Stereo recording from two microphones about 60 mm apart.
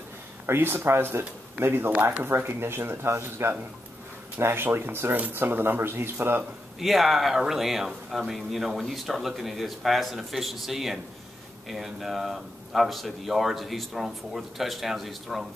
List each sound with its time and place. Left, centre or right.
0.5 s speech: right
6.8 s speech: centre